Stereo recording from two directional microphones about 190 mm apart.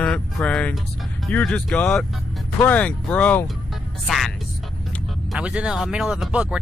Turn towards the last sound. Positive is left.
turn(degrees=-5)  # may be behind; listen again after turning